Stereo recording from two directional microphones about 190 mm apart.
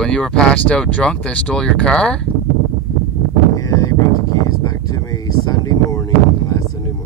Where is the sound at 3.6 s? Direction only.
15° left (ahead or behind).